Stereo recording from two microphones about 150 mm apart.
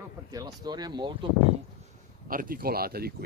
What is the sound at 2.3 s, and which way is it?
Speech, 70° right (ahead or behind).